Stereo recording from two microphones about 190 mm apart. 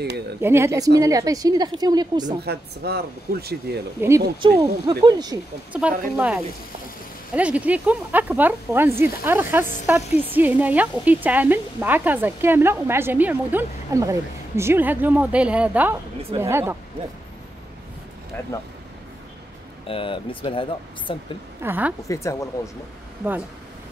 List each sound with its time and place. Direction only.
0.4 s a woman's voice: 15° right (ahead or behind)
2.4 s speech: 60° right (ahead or behind)
4.0 s a woman's voice: 10° right (ahead or behind)
4.6 s a woman's voice: 20° right (ahead or behind)
5.7 s a woman's voice: 5° right (ahead or behind)
19.9 s speech: 25° left (ahead or behind)
21.6 s a woman's voice: 10° right (ahead or behind)
22.0 s speech: 15° left (ahead or behind)